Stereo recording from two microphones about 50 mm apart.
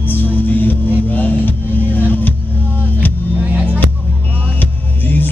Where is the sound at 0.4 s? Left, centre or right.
Left.